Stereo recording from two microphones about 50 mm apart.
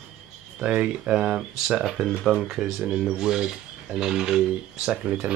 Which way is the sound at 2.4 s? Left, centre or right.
Centre.